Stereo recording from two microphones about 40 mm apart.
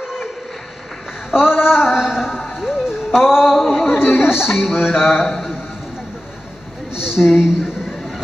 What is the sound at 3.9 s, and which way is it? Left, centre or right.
Chatter, left.